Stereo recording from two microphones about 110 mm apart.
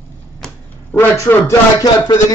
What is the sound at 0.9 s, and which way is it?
Speech, 20° left (ahead or behind).